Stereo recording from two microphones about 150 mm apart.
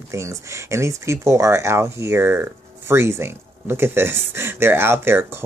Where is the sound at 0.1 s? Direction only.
20° right (ahead or behind).